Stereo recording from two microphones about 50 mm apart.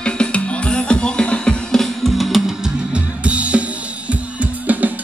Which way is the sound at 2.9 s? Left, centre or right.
Right.